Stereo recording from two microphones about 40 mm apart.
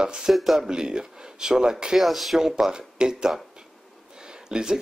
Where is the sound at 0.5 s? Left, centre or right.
Centre.